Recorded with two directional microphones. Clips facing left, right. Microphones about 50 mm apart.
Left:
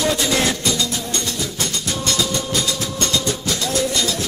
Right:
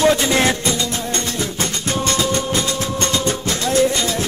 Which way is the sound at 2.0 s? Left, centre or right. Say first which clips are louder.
Right 2 dB; right.